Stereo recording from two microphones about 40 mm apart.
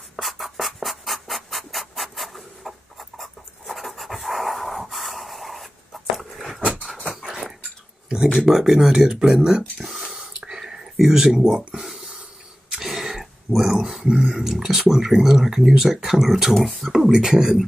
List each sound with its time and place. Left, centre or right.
0.1 s scratch: centre
6.1 s a sound: centre
7.2 s dog: centre
8.4 s speech: centre
9.0 s speech: centre
9.9 s a sound: centre
14.1 s speech: centre
16.5 s speech: centre
16.8 s speech: centre